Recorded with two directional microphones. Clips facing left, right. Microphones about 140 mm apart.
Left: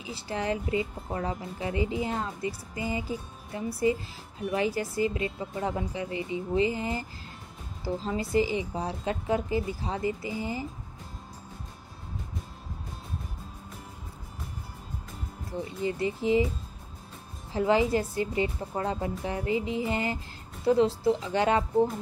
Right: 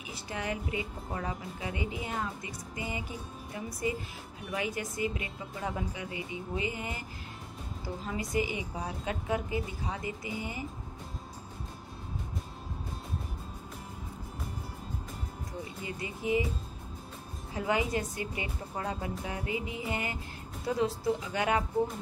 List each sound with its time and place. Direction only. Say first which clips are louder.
0.0 s a woman's voice: left 5 dB; 30° left (ahead or behind)
15.8 s a woman's voice: left 10 dB; 25° left (ahead or behind)
17.5 s a woman's voice: left 7 dB; 25° left (ahead or behind)